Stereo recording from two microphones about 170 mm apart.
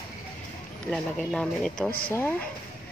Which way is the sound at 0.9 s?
5° left (ahead or behind).